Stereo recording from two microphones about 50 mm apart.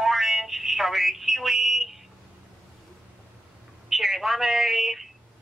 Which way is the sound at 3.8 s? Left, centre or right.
Centre.